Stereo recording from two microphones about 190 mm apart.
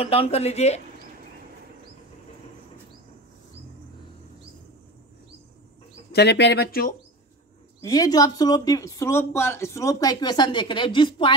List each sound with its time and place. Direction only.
0.0 s speech: 30° left (ahead or behind)
6.1 s speech: 65° left (ahead or behind)
7.8 s speech: 20° left (ahead or behind)